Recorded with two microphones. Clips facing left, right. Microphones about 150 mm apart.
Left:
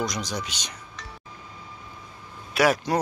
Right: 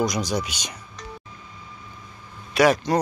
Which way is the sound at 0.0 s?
10° right (ahead or behind).